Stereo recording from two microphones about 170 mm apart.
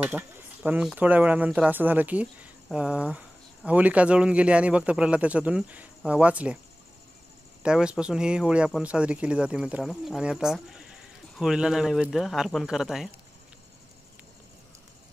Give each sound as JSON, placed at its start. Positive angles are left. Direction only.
{"t": 0.0, "sound": "speech", "side_deg": -10}
{"t": 7.6, "sound": "speech", "side_deg": -5}